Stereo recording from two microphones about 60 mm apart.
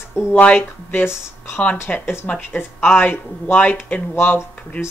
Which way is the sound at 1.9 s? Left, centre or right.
Centre.